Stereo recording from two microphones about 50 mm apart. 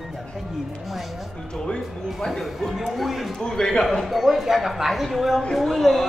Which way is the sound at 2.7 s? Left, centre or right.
Centre.